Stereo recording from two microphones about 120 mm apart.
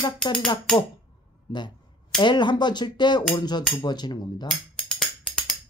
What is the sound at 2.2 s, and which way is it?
Speech, 40° left (ahead or behind).